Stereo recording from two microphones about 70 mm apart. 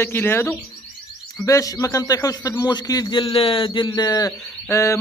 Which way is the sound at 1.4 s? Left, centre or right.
Left.